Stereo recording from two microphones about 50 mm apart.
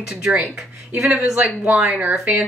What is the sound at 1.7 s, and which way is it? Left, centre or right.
Speech, right.